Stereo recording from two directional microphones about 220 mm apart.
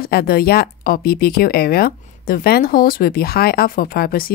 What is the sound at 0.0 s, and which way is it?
Speech, 45° left (ahead or behind).